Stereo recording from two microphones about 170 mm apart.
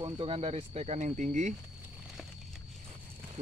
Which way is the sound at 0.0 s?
30° right (ahead or behind).